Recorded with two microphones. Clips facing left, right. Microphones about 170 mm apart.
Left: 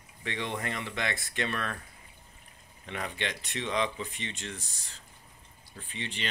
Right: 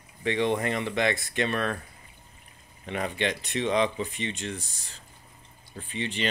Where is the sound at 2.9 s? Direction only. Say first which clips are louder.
Right 7 dB; 25° right (ahead or behind).